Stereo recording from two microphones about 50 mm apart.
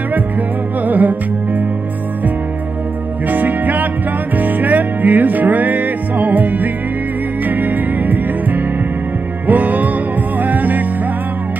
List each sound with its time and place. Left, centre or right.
0.8 s music: right
3.3 s music: right